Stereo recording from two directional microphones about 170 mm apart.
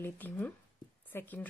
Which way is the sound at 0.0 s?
10° left (ahead or behind).